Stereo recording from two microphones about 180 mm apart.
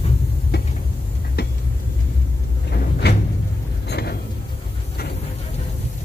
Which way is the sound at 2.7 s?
65° left (ahead or behind).